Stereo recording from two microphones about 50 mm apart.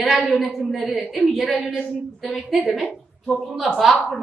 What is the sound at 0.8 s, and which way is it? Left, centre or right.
Speech, centre.